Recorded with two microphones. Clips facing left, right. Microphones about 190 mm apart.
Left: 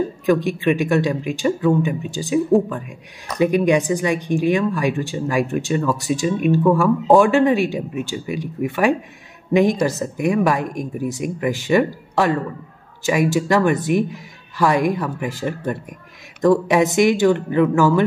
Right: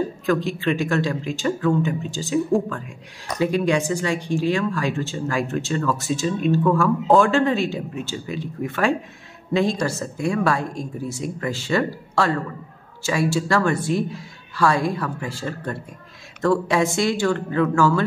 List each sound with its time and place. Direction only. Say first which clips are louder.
0.3 s speech: left 5 dB; 15° left (ahead or behind)